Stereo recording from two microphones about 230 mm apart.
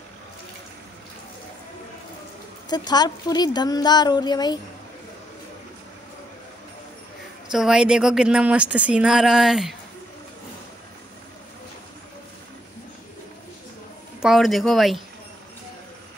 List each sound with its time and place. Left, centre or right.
2.7 s speech: centre
7.5 s speech: centre
14.2 s speech: centre